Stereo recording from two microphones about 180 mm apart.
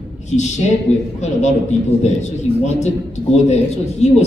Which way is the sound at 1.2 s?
40° left (ahead or behind).